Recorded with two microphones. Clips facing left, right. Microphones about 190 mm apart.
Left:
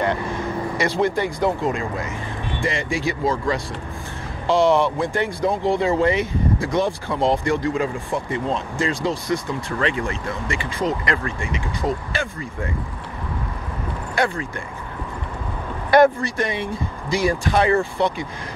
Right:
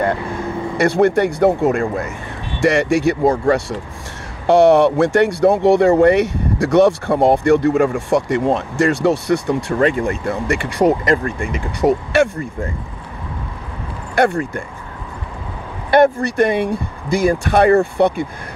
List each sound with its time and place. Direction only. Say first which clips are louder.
0.8 s speech: right 8 dB; 70° right (ahead or behind)
9.8 s speech: right 6 dB; 50° right (ahead or behind); by 11.0 s 70° right (ahead or behind)
11.1 s speech: right 7 dB; 45° right (ahead or behind); by 12.3 s 70° right (ahead or behind)
14.2 s speech: right 7 dB; 60° right (ahead or behind)
16.2 s speech: right 8 dB; 60° right (ahead or behind)